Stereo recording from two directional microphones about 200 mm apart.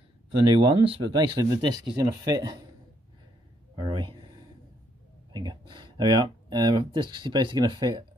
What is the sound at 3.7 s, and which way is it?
Speech, 25° right (ahead or behind).